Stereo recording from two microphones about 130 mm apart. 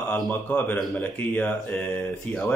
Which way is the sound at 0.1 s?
15° left (ahead or behind).